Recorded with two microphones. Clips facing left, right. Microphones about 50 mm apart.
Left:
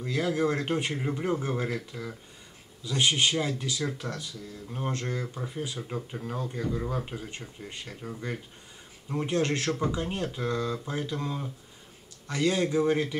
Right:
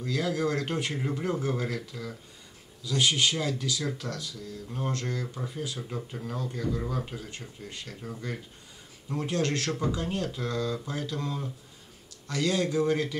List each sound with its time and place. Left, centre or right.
0.0 s speech: left
0.9 s speech: centre
4.6 s speech: centre
5.8 s speech: centre